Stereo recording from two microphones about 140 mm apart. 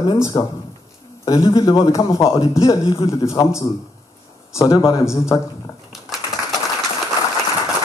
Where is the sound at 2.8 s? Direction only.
40° left (ahead or behind).